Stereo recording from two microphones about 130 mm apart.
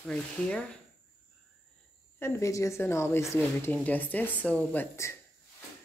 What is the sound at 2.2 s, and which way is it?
Speech, 20° left (ahead or behind).